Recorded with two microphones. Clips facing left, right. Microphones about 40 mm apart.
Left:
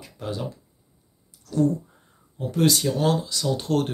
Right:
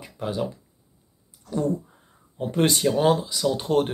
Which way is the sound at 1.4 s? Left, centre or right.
Right.